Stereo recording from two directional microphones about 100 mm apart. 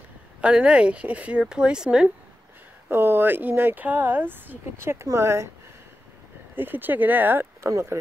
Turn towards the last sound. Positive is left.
turn(degrees=-30)  # may be behind; listen again after turning